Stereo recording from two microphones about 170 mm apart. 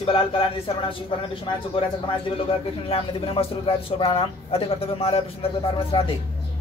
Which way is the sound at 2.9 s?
35° left (ahead or behind).